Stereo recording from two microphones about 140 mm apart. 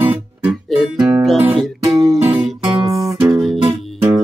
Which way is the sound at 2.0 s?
25° right (ahead or behind).